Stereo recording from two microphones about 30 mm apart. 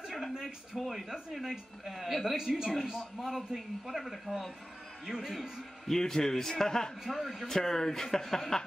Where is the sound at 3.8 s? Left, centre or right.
Centre.